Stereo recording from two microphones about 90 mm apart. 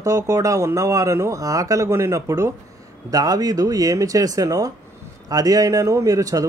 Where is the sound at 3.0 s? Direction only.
40° right (ahead or behind).